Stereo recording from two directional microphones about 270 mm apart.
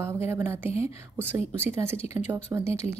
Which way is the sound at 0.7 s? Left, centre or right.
Left.